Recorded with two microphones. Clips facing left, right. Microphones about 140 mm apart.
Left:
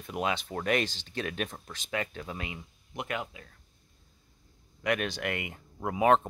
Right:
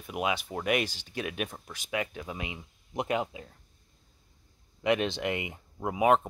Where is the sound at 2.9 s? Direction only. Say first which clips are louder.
Right 6 dB; 25° right (ahead or behind).